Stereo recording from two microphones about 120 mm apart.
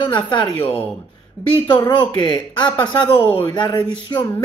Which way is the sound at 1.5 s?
40° left (ahead or behind).